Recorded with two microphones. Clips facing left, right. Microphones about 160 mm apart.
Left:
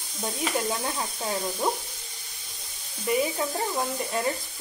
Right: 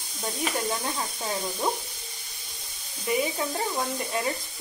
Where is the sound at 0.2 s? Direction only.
Centre (ahead or behind).